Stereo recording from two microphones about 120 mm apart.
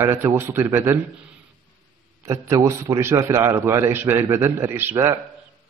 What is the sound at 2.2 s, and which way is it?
A man's voice, 25° right (ahead or behind).